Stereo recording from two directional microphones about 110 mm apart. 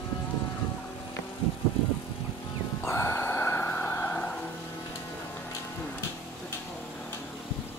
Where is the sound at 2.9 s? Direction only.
25° left (ahead or behind).